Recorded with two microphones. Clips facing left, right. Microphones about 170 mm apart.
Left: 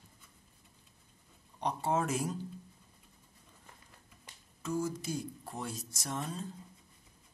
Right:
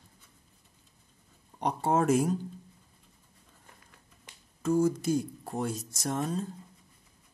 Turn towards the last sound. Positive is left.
turn(degrees=-45)  # may be behind; listen again after turning